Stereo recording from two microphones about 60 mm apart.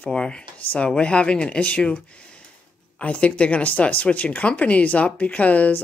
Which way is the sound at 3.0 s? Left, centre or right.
Centre.